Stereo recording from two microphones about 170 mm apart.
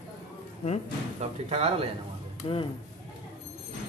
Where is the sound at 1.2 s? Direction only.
40° right (ahead or behind).